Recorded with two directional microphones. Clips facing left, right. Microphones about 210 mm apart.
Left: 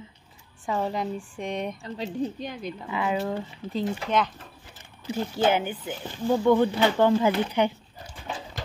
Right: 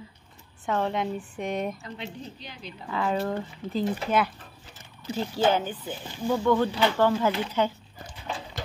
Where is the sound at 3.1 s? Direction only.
10° left (ahead or behind).